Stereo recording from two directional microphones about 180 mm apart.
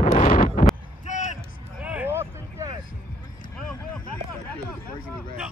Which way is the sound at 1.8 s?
10° right (ahead or behind).